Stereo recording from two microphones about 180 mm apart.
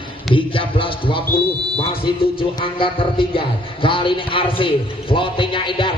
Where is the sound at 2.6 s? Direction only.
30° left (ahead or behind).